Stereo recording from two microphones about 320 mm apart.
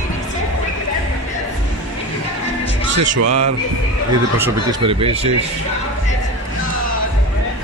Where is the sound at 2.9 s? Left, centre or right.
Right.